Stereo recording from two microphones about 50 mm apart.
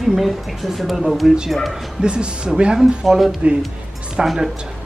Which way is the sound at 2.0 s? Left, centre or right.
Centre.